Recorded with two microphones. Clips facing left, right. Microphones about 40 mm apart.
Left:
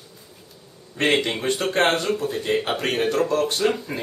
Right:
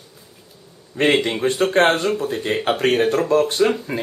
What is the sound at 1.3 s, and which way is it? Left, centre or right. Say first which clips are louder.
Speech: right 5 dB; right.